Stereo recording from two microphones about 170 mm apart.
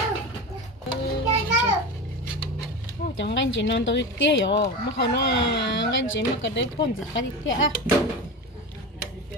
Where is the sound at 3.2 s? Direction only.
90° left.